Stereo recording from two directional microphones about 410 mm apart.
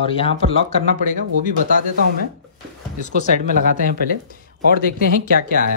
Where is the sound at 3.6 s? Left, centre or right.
Centre.